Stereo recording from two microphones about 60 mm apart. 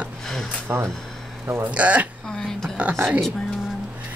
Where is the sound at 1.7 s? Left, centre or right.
Right.